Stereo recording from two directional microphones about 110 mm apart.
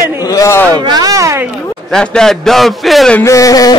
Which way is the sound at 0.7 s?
40° right (ahead or behind).